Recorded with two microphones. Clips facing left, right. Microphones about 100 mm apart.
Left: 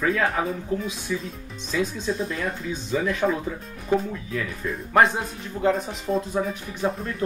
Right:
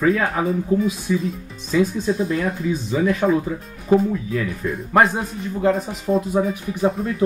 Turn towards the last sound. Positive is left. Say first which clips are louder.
# right 6 dB
turn(degrees=-5)  # may be behind; listen again after turning